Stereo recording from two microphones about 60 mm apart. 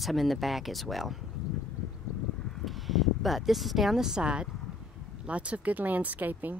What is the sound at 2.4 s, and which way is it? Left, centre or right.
Speech, centre.